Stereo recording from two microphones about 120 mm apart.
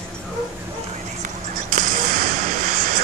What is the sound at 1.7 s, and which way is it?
Whip, 90° right.